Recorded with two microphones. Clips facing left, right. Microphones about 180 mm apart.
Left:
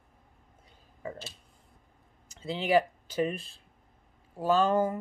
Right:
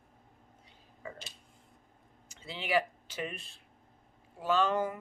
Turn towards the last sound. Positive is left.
turn(degrees=40)  # may be behind; listen again after turning